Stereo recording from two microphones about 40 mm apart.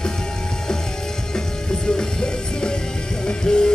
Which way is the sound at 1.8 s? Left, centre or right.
Centre.